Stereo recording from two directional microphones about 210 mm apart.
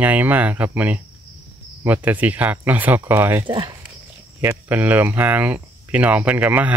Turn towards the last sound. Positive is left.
turn(degrees=-5)  # may be behind; listen again after turning